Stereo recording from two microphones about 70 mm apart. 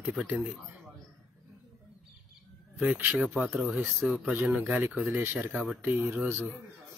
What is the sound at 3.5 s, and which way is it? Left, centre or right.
Speech, centre.